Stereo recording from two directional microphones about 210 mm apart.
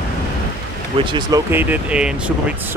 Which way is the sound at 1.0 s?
20° right (ahead or behind).